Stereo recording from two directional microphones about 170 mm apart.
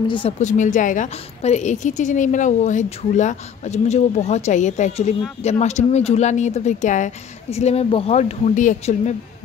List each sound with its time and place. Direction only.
0.4 s a woman's voice: 45° left (ahead or behind)